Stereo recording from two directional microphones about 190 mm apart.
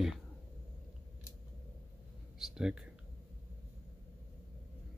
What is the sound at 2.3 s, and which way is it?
Speech, 5° right (ahead or behind).